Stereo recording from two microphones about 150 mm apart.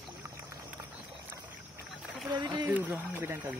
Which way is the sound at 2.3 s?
25° right (ahead or behind).